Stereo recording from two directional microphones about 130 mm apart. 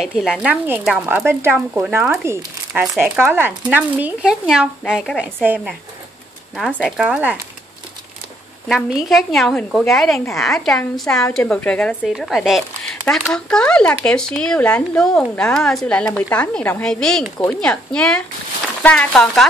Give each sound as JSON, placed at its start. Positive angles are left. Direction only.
{"t": 0.0, "sound": "speech", "side_deg": 0}
{"t": 0.8, "sound": "speech", "side_deg": -15}
{"t": 8.6, "sound": "speech", "side_deg": 0}